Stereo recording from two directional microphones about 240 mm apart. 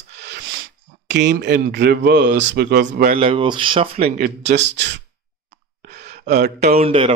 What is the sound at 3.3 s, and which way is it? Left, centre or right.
Speech, right.